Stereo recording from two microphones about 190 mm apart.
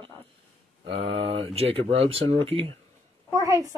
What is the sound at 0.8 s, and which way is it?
Speech, 30° right (ahead or behind).